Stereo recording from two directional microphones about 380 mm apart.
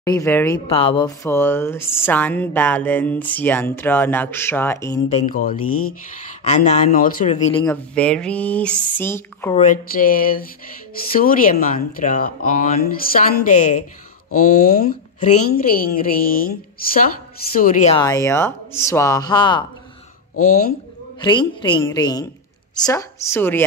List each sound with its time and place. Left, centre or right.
0.0 s speech: centre
5.2 s a woman's voice: left
7.6 s speech: centre
9.6 s a woman's voice: left
20.4 s a woman's voice: left
21.2 s speech: centre